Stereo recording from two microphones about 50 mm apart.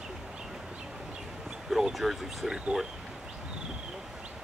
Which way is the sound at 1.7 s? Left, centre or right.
Centre.